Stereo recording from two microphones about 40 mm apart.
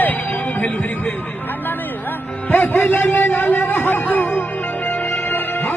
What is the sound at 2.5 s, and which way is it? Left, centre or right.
Speech, left.